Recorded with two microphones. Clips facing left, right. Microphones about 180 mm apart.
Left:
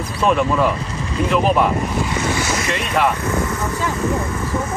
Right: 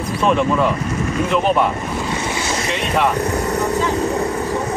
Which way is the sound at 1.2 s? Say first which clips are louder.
Left 1 dB; centre (ahead or behind).